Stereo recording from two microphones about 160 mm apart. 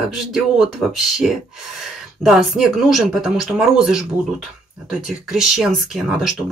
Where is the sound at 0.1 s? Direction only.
5° right (ahead or behind).